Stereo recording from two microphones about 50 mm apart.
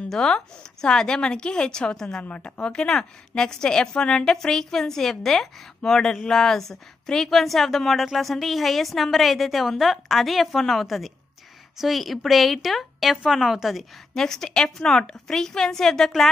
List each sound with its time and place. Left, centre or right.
0.1 s a woman's voice: centre
2.2 s a woman's voice: left; by 13.8 s centre
14.1 s a woman's voice: centre